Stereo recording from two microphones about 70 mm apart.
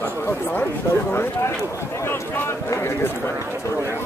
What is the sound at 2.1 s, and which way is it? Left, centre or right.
Speech, left.